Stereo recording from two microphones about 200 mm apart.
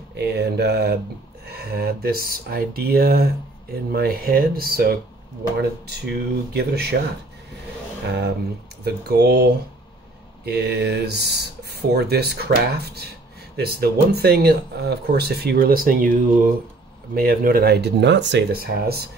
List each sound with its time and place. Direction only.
0.1 s speech: 55° right (ahead or behind)
8.8 s speech: 55° right (ahead or behind)